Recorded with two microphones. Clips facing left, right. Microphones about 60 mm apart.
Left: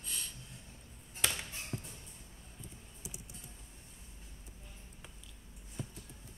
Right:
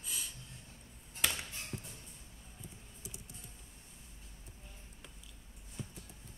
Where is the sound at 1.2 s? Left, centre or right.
Centre.